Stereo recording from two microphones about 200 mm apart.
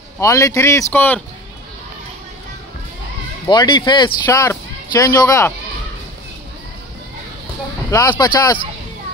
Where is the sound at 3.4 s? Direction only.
20° left (ahead or behind).